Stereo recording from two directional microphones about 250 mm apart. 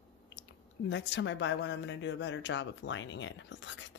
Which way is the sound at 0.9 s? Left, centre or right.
Left.